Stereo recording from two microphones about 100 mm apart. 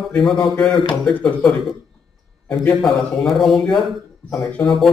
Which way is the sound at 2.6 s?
5° left (ahead or behind).